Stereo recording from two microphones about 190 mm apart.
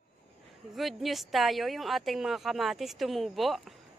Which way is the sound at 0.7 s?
Centre (ahead or behind).